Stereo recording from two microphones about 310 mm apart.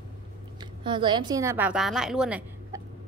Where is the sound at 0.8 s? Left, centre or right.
Centre.